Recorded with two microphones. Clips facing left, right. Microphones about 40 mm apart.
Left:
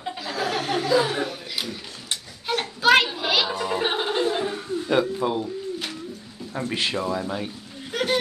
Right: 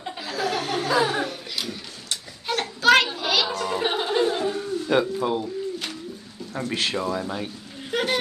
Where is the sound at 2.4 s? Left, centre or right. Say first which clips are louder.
Right 1 dB; centre; by 4.7 s left.